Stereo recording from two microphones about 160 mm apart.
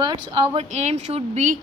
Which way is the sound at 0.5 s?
45° right (ahead or behind).